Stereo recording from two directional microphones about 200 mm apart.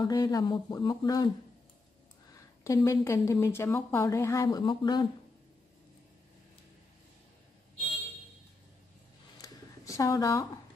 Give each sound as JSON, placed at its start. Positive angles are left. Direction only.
{"t": 0.0, "sound": "speech", "side_deg": 20}
{"t": 2.3, "sound": "speech", "side_deg": 15}
{"t": 9.4, "sound": "a sound", "side_deg": 15}